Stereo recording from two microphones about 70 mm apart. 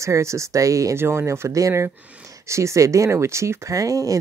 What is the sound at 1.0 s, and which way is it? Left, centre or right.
Speech, right.